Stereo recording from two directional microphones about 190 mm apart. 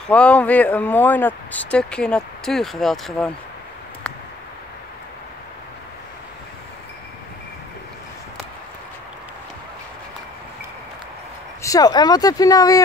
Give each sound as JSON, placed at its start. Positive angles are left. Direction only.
{"t": 0.1, "sound": "speech", "side_deg": 5}
{"t": 11.6, "sound": "speech", "side_deg": 20}